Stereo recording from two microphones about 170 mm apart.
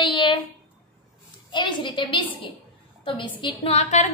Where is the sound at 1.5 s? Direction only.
30° left (ahead or behind).